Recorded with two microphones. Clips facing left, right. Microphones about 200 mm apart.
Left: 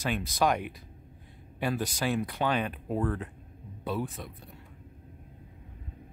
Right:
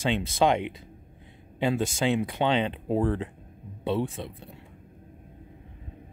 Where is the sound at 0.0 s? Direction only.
25° right (ahead or behind).